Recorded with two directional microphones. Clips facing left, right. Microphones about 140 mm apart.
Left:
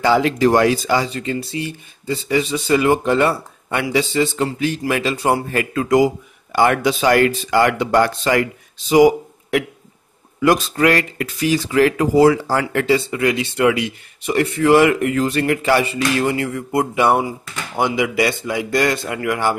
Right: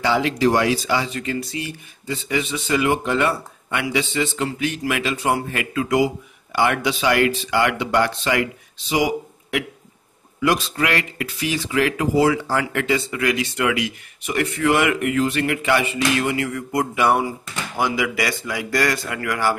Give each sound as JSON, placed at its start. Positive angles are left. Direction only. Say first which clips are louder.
{"t": 0.0, "sound": "speech", "louder": "left 4 dB", "side_deg": 45}